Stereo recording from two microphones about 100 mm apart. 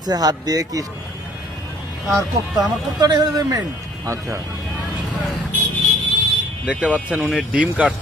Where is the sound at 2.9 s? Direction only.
40° right (ahead or behind).